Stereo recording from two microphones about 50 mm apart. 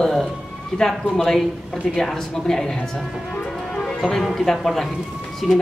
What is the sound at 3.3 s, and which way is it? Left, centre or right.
Music, centre.